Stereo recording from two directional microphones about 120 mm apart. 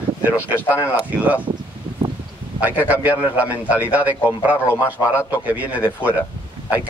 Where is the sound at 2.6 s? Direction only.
15° right (ahead or behind).